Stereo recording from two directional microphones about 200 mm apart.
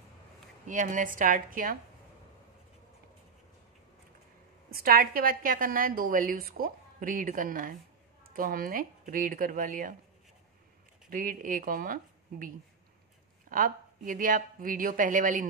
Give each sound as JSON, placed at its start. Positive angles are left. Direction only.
{"t": 0.7, "sound": "a woman's voice", "side_deg": -40}
{"t": 4.6, "sound": "a woman's voice", "side_deg": -50}
{"t": 11.1, "sound": "a woman's voice", "side_deg": -40}